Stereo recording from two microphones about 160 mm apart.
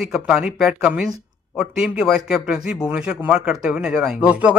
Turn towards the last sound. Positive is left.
turn(degrees=-5)  # may be behind; listen again after turning